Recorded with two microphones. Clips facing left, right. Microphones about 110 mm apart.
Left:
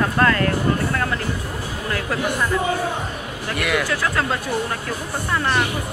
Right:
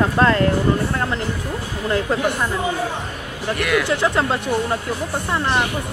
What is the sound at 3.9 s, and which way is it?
Speech, 25° right (ahead or behind).